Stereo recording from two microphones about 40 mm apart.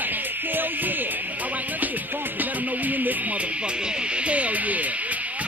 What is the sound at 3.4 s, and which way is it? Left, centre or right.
Music, right.